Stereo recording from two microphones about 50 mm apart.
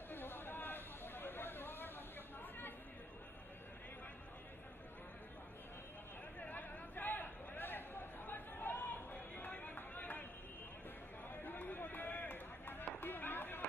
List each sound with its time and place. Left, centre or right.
0.1 s a sound: left
6.4 s chatter: left
11.4 s run: left